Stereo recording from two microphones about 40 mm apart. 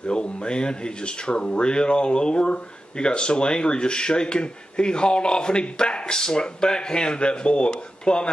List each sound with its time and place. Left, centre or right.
0.0 s speech: left